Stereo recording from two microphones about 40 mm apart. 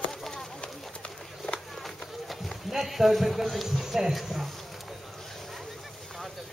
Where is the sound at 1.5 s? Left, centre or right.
Centre.